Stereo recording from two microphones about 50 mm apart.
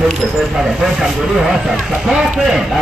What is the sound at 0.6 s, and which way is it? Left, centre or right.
Speech, centre.